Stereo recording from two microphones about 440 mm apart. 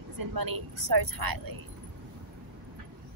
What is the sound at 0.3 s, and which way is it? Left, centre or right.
A woman's voice, right.